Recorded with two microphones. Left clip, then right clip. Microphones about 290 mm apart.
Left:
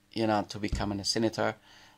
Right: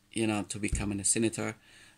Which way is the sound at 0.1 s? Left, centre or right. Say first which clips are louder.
Left 4 dB; centre.